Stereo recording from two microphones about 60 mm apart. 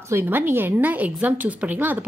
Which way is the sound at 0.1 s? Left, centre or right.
Right.